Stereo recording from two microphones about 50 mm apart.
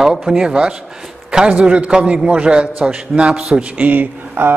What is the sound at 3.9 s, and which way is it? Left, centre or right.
Speech, right.